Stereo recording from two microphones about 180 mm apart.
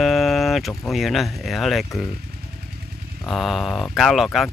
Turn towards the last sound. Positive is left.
turn(degrees=0)  # may be behind; listen again after turning